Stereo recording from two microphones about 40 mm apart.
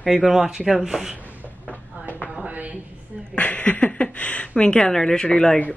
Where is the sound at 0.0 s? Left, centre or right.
Centre.